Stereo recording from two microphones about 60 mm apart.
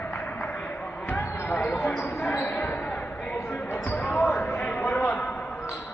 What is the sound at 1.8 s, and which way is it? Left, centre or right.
Basketball bounce, left.